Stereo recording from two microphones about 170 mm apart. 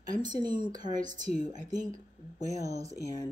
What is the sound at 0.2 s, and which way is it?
Speech, 25° right (ahead or behind).